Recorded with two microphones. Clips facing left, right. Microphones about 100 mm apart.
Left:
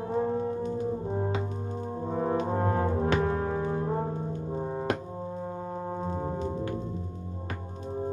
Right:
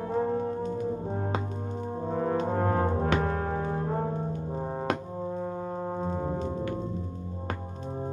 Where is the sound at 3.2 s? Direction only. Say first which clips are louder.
Left 1 dB; 45° right (ahead or behind).